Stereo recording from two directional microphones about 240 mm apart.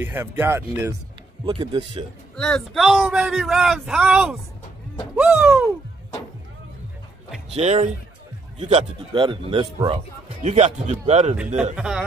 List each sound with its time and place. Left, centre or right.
0.0 s a man's voice: centre
2.3 s speech: centre
5.1 s music: centre
7.5 s a man's voice: right
11.7 s speech: centre